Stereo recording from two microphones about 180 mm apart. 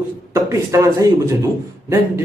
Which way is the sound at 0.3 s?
15° right (ahead or behind).